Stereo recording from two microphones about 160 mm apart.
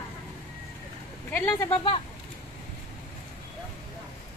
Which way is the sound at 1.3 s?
15° left (ahead or behind).